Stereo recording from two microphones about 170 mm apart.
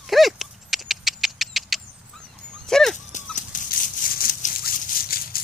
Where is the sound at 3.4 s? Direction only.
50° left (ahead or behind).